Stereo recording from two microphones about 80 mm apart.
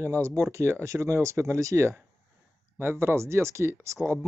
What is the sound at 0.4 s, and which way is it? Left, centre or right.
Speech, right.